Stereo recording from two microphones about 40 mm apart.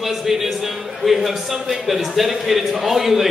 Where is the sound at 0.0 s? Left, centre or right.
Centre.